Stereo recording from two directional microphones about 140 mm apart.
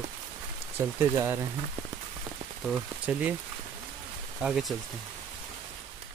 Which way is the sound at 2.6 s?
10° right (ahead or behind).